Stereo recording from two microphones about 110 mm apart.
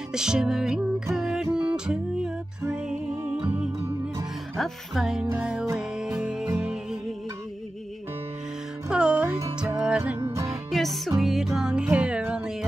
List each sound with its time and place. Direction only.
0.1 s music: 5° right (ahead or behind)
8.8 s music: 10° right (ahead or behind)
10.4 s music: centre (ahead or behind)